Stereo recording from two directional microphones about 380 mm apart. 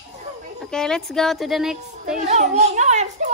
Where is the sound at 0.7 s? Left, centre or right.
Centre.